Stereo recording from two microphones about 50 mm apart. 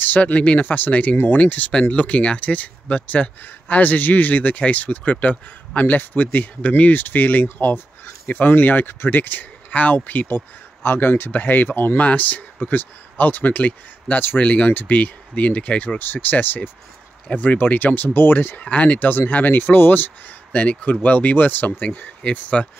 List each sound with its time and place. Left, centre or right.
0.0 s speech: left
12.0 s speech: left
16.0 s speech: left
18.6 s speech: left
22.2 s speech: left